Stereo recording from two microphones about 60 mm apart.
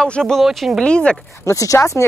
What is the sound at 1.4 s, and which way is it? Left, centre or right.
Speech, left.